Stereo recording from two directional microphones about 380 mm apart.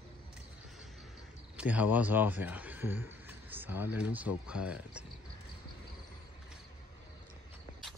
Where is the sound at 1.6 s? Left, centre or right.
Centre.